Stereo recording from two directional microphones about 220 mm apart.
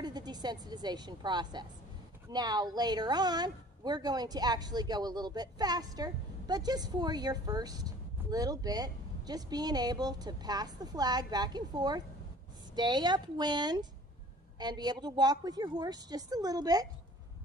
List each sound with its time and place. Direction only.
0.0 s a woman's voice: 20° right (ahead or behind)